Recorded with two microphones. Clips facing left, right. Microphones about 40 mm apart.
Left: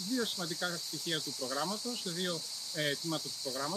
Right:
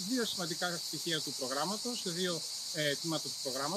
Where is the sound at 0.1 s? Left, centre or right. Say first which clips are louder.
Even; centre.